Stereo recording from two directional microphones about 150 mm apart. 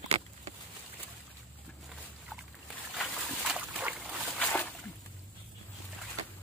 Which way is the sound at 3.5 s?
10° right (ahead or behind).